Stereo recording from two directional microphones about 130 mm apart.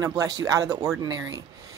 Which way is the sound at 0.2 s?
25° right (ahead or behind).